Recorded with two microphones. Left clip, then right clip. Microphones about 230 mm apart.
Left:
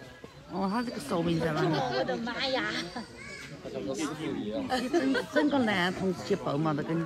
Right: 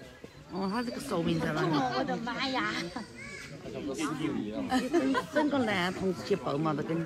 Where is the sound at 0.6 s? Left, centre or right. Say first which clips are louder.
Left 2 dB; left.